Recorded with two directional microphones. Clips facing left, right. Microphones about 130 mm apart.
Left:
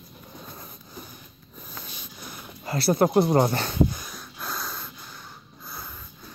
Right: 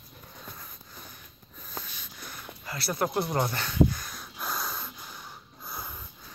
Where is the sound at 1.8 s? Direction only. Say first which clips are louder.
Left 4 dB; 15° left (ahead or behind).